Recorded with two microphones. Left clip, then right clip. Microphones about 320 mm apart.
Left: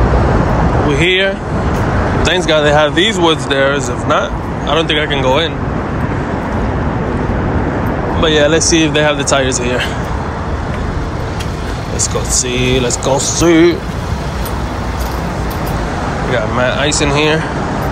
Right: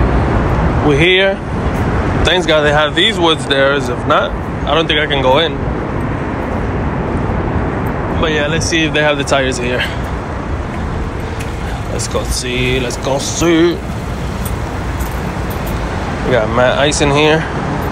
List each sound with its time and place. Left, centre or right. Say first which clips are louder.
0.9 s speech: right 3 dB; centre
8.2 s speech: left 5 dB; centre
12.5 s speech: left 1 dB; centre
16.3 s speech: right 4 dB; centre